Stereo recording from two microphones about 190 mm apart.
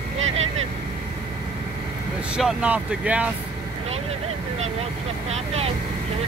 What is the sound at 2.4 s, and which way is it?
Speech, 5° right (ahead or behind).